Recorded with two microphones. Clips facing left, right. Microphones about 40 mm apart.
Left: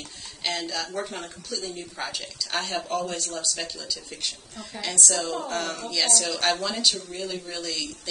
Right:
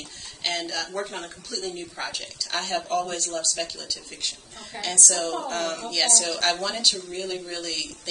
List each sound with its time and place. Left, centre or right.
0.4 s speech: centre